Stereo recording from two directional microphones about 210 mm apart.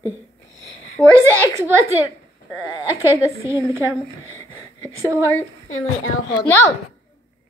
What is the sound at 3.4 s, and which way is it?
Speech, 10° right (ahead or behind).